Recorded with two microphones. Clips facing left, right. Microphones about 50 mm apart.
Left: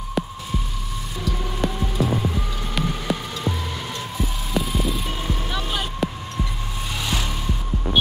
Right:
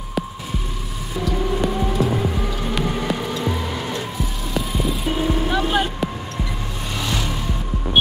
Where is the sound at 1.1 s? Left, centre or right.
Centre.